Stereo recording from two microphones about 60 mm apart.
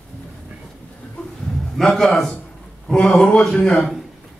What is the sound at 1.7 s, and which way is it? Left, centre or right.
A man's voice, centre.